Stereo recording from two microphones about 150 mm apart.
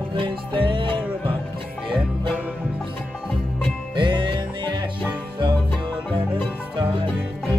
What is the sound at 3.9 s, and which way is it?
Music, 35° right (ahead or behind).